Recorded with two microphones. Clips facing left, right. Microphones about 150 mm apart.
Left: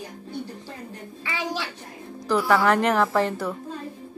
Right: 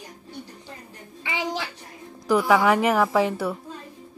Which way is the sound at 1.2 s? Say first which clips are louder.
Right 1 dB; 20° right (ahead or behind).